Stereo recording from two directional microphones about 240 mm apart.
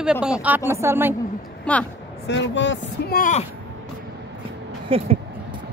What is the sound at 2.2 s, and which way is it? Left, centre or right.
Speech, left.